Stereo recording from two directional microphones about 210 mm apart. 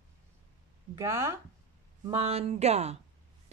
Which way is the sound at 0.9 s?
10° right (ahead or behind).